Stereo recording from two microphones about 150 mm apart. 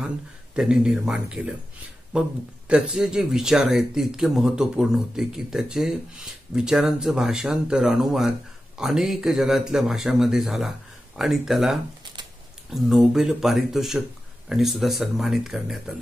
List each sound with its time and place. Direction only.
0.6 s speech: 5° right (ahead or behind)